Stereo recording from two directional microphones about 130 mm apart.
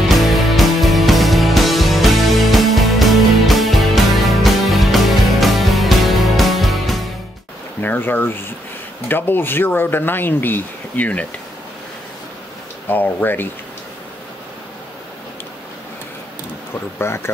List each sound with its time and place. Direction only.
0.1 s music: centre (ahead or behind)
7.8 s a sound: 15° left (ahead or behind)
9.1 s speech: 15° left (ahead or behind)
12.8 s speech: 15° left (ahead or behind)
17.0 s speech: 20° left (ahead or behind)